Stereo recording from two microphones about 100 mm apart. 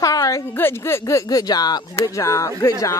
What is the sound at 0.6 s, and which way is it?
Speech, 25° left (ahead or behind).